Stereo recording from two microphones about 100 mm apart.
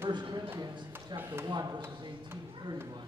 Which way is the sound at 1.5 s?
40° right (ahead or behind).